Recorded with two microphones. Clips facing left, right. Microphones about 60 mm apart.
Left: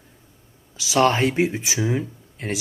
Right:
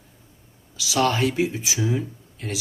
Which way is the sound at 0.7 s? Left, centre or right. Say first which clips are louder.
Left 3 dB; left.